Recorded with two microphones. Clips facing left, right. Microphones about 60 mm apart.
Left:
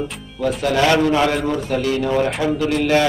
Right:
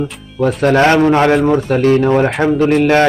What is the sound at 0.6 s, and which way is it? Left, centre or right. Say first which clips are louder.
A man's voice: right 6 dB; right.